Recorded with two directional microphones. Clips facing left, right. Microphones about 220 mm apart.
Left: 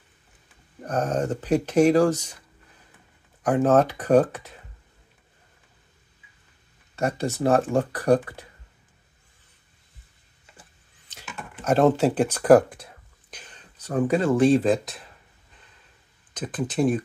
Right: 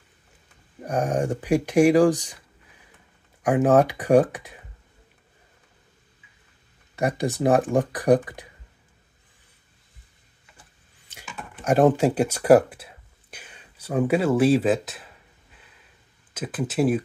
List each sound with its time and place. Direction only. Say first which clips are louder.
0.7 s speech: right 1 dB; 15° right (ahead or behind)
3.4 s speech: right 1 dB; 15° right (ahead or behind)
7.0 s speech: right 1 dB; 15° right (ahead or behind)
11.1 s a sound: even; 10° right (ahead or behind)
11.6 s speech: right 1 dB; 15° right (ahead or behind)
16.3 s speech: right 1 dB; 5° right (ahead or behind)